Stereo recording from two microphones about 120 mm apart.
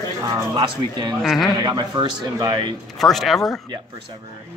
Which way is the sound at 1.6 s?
35° right (ahead or behind).